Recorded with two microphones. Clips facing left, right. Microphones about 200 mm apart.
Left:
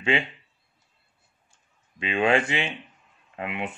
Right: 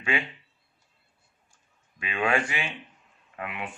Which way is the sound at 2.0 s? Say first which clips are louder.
Left 4 dB; 25° left (ahead or behind).